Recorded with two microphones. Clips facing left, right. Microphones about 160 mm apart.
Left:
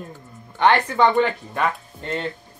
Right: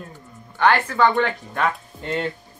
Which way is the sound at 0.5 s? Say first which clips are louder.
Left 1 dB; 20° left (ahead or behind).